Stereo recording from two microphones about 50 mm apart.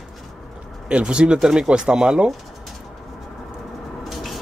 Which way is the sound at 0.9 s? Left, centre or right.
Centre.